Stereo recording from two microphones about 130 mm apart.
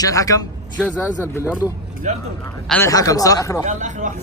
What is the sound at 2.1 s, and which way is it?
Speech, 70° right (ahead or behind).